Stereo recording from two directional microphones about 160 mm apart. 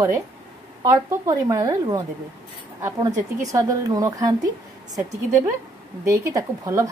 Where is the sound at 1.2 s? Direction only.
20° right (ahead or behind).